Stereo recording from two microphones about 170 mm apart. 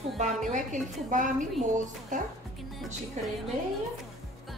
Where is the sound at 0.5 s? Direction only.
50° right (ahead or behind).